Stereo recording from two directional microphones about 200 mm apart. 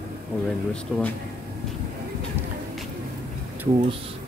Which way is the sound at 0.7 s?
5° left (ahead or behind).